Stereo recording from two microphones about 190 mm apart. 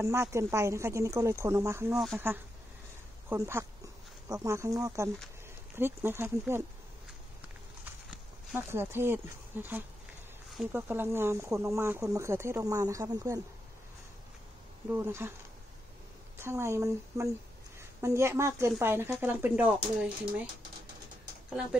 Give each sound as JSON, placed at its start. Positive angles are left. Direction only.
{"t": 0.0, "sound": "speech", "side_deg": -15}
{"t": 8.5, "sound": "speech", "side_deg": -10}
{"t": 14.9, "sound": "speech", "side_deg": -10}
{"t": 16.3, "sound": "speech", "side_deg": -15}